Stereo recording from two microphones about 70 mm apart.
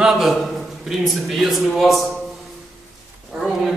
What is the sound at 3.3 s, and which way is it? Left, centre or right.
Roaring cats, centre.